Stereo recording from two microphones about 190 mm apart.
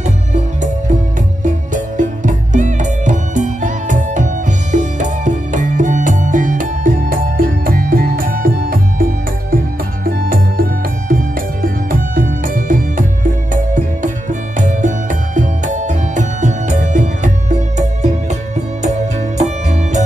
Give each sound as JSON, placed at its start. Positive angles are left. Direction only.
{"t": 0.0, "sound": "music", "side_deg": -40}